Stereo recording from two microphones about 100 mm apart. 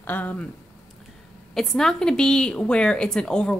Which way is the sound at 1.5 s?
5° left (ahead or behind).